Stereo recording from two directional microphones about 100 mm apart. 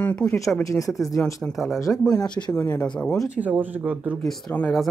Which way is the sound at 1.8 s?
35° left (ahead or behind).